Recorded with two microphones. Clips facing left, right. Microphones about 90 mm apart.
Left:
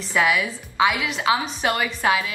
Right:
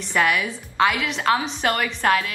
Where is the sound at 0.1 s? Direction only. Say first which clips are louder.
Even; 5° left (ahead or behind).